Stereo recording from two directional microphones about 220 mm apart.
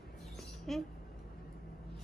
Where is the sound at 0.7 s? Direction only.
Centre (ahead or behind).